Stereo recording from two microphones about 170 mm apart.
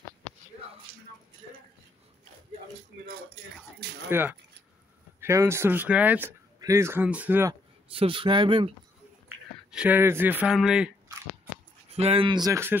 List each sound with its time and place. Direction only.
4.1 s speech: 10° right (ahead or behind)
7.9 s speech: 30° right (ahead or behind)
9.7 s speech: 10° right (ahead or behind)
11.9 s speech: 35° right (ahead or behind); by 12.7 s 15° right (ahead or behind)